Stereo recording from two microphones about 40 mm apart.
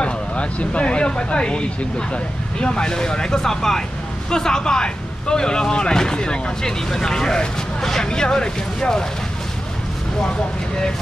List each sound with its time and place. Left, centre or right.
0.0 s speech: left